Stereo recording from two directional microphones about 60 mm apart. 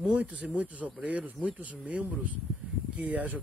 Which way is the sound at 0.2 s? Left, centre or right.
Right.